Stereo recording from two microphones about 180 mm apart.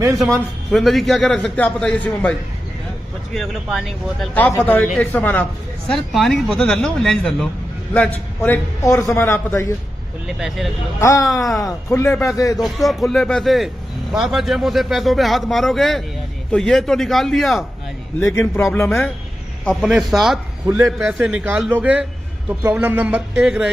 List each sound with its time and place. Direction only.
0.7 s a man's voice: centre (ahead or behind)
3.3 s a man's voice: centre (ahead or behind)
10.2 s a man's voice: centre (ahead or behind)
11.0 s a man's voice: 15° left (ahead or behind)
11.2 s a man's voice: centre (ahead or behind)
12.2 s a man's voice: 15° left (ahead or behind)
12.5 s a man's voice: centre (ahead or behind)
18.2 s a man's voice: 15° left (ahead or behind)
19.6 s a man's voice: centre (ahead or behind)